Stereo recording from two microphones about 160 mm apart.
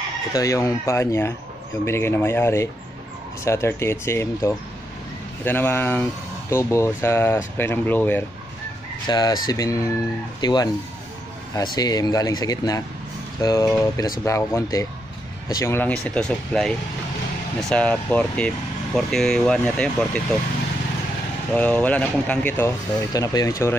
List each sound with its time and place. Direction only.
0.3 s speech: 20° left (ahead or behind)
9.0 s speech: 25° left (ahead or behind); by 20.1 s 5° left (ahead or behind)
21.5 s speech: 10° left (ahead or behind)